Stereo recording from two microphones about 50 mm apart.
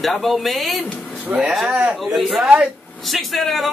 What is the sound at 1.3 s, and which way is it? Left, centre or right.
Speech, right.